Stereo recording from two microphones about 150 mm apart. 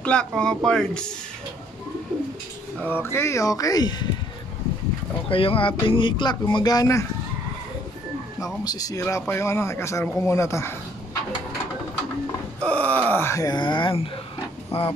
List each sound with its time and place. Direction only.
0.0 s speech: 5° left (ahead or behind)
2.8 s speech: 15° left (ahead or behind)
5.3 s speech: 35° left (ahead or behind)
8.6 s speech: 25° left (ahead or behind)
12.6 s speech: 10° left (ahead or behind); by 14.9 s 40° left (ahead or behind)